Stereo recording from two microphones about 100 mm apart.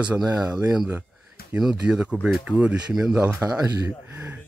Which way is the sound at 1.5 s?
10° right (ahead or behind).